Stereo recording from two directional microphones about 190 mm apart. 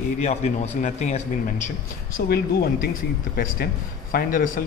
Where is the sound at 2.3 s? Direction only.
55° left (ahead or behind).